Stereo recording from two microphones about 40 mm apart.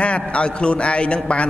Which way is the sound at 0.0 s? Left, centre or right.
Left.